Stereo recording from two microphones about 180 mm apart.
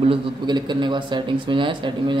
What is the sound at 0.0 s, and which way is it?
A man's voice, 25° right (ahead or behind).